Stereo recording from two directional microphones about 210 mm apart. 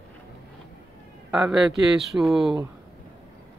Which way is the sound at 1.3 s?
Centre (ahead or behind).